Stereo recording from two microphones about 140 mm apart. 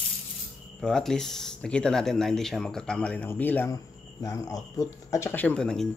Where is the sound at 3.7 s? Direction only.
25° left (ahead or behind).